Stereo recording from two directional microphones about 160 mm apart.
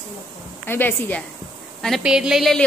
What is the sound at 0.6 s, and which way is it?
Speech, 15° left (ahead or behind).